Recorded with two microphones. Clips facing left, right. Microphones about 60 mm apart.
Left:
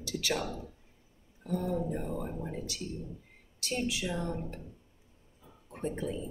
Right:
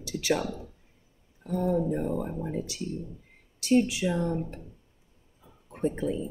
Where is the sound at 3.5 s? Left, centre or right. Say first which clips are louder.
Right 10 dB; centre.